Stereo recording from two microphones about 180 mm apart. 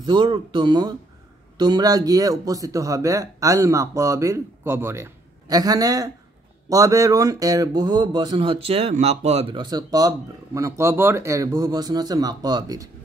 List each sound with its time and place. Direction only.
0.0 s speech: 25° right (ahead or behind)